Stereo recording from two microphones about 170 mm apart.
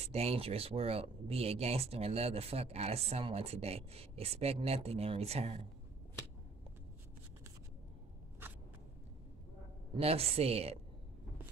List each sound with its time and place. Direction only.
0.0 s speech: 40° right (ahead or behind)
9.9 s speech: 35° right (ahead or behind)